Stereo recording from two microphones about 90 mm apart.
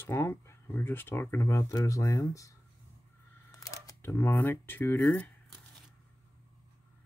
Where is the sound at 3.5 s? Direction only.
40° left (ahead or behind); by 5.3 s 20° left (ahead or behind).